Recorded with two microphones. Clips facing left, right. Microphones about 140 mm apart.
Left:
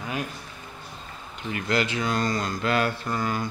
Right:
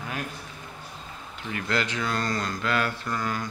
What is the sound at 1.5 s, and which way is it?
Speech, 10° left (ahead or behind).